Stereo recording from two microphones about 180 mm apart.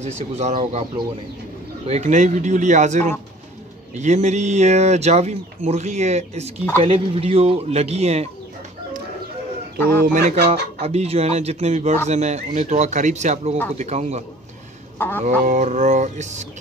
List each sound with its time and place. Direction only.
0.0 s speech: 40° right (ahead or behind)
10.1 s speech: 60° right (ahead or behind)
10.5 s speech: 35° right (ahead or behind)
15.0 s fowl: 10° left (ahead or behind)
15.4 s speech: 40° right (ahead or behind)